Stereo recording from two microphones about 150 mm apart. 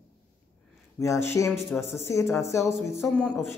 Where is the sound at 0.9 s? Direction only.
20° left (ahead or behind).